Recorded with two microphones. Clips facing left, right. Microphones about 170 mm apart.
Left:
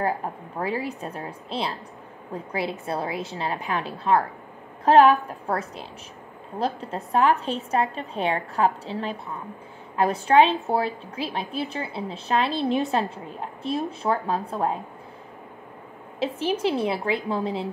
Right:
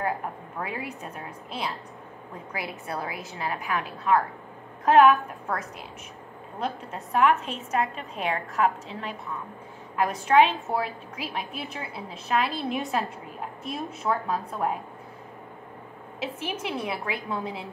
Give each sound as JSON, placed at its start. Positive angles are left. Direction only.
{"t": 0.6, "sound": "a woman's voice", "side_deg": 30}
{"t": 2.9, "sound": "a woman's voice", "side_deg": 30}
{"t": 16.2, "sound": "a woman's voice", "side_deg": 30}